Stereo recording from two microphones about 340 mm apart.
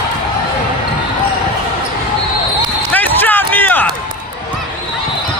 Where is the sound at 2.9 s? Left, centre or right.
Centre.